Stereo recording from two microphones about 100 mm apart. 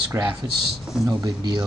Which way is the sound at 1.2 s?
50° right (ahead or behind).